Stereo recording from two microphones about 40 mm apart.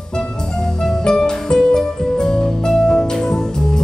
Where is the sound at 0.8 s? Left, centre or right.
Centre.